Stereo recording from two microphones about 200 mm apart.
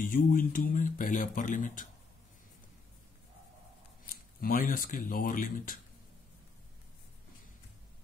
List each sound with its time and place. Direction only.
0.0 s speech: 45° left (ahead or behind)
4.4 s speech: 45° left (ahead or behind)